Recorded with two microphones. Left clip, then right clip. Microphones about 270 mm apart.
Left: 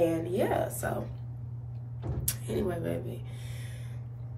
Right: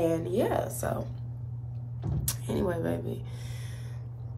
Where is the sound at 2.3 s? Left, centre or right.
Centre.